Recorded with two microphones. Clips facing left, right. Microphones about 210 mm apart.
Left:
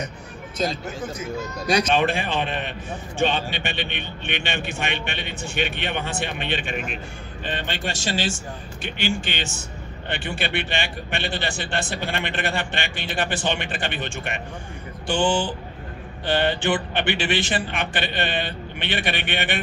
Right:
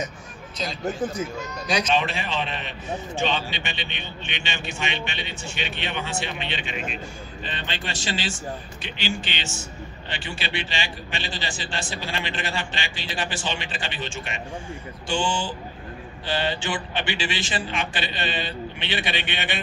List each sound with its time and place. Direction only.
2.0 s a man's voice: 55° left (ahead or behind)